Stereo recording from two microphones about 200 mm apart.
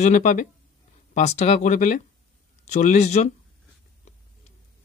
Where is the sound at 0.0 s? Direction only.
40° left (ahead or behind).